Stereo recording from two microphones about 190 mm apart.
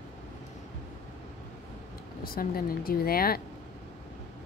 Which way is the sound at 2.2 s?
50° left (ahead or behind).